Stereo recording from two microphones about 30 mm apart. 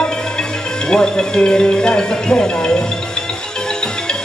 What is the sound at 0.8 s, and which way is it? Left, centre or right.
Speech, left.